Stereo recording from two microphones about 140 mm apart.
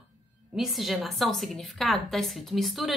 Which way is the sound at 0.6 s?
Centre (ahead or behind).